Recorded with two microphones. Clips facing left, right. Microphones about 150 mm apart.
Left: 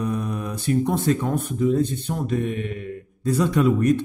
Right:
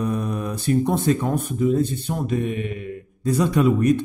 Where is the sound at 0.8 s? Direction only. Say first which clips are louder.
Right 1 dB; 15° right (ahead or behind).